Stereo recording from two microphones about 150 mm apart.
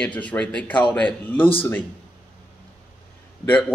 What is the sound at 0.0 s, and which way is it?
Speech, 10° left (ahead or behind).